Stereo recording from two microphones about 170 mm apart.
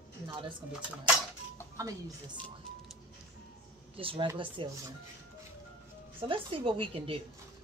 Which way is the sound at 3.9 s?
30° right (ahead or behind).